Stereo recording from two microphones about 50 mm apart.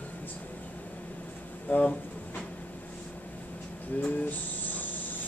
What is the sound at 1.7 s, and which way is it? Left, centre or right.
Speech, left.